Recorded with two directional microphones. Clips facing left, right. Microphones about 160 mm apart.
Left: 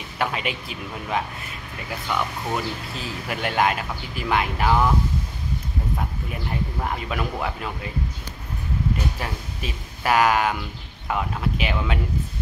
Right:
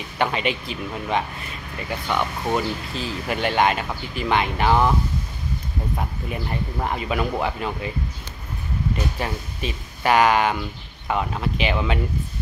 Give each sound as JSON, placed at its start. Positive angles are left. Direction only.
{"t": 0.2, "sound": "speech", "side_deg": 5}
{"t": 5.9, "sound": "speech", "side_deg": -5}
{"t": 9.2, "sound": "speech", "side_deg": 0}